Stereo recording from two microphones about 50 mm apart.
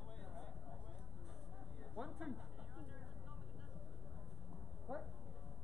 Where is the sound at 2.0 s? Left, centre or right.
Centre.